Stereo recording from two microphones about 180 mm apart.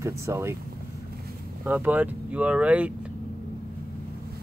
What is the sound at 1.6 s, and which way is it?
Speech, 10° right (ahead or behind).